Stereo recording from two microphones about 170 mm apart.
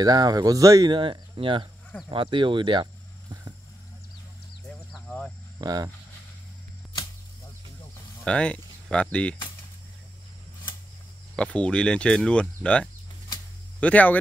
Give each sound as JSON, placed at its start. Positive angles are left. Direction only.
{"t": 0.0, "sound": "speech", "side_deg": -20}
{"t": 4.9, "sound": "vehicle", "side_deg": 5}
{"t": 5.6, "sound": "speech", "side_deg": -20}
{"t": 8.2, "sound": "speech", "side_deg": 5}
{"t": 11.3, "sound": "speech", "side_deg": 5}